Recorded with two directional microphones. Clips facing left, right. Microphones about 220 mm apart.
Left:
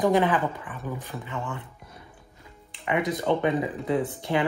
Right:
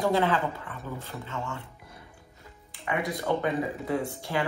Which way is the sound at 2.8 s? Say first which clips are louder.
Left 4 dB; 20° left (ahead or behind).